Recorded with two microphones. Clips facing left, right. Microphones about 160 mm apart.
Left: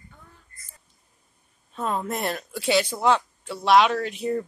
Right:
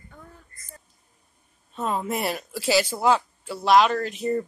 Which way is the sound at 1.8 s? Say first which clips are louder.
Right 1 dB; centre (ahead or behind).